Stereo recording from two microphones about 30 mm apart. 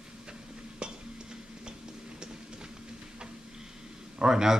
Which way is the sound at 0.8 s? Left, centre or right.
Right.